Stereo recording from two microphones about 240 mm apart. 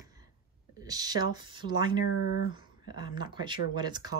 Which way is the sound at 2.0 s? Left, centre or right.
Left.